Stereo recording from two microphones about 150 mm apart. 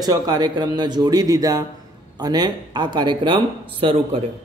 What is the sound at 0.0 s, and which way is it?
Speech, 25° right (ahead or behind).